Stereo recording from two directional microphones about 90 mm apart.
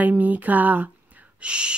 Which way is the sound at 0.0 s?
20° right (ahead or behind).